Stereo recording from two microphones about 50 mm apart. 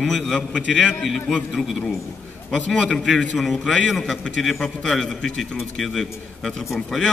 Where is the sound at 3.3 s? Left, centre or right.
Centre.